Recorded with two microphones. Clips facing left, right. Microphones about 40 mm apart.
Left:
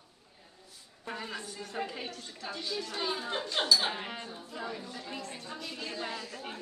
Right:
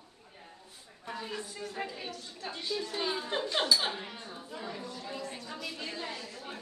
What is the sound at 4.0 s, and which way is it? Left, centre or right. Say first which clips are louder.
Speech: left 3 dB; left.